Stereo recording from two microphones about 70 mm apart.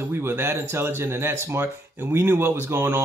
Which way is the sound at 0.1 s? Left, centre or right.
Right.